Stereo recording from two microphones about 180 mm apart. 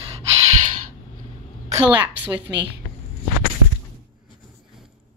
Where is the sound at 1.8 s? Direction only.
10° right (ahead or behind).